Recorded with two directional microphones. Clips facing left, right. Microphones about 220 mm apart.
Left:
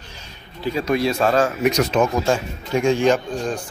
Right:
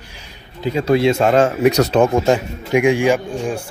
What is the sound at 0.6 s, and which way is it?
Speech, 25° right (ahead or behind).